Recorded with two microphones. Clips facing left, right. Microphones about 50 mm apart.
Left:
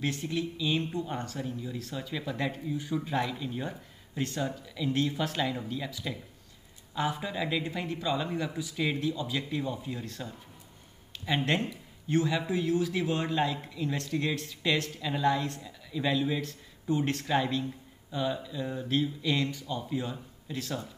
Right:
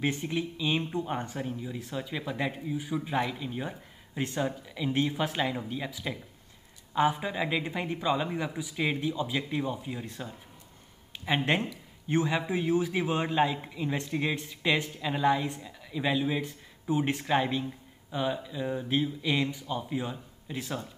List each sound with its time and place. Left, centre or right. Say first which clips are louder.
0.0 s a man's voice: right 1 dB; centre